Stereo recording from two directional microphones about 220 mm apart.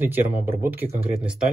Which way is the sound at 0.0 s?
10° right (ahead or behind).